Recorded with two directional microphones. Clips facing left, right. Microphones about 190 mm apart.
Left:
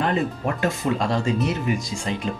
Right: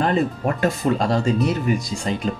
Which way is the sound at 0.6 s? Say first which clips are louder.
Right 3 dB; 35° right (ahead or behind).